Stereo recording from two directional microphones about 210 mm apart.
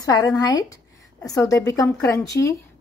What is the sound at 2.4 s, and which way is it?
Speech, 55° left (ahead or behind).